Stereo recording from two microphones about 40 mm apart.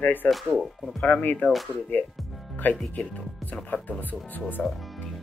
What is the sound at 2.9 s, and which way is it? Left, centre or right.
Speech, left.